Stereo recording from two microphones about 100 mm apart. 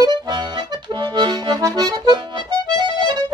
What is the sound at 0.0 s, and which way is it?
Accordion, 45° right (ahead or behind).